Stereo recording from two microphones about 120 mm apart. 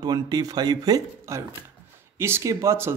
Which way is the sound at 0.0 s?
35° right (ahead or behind).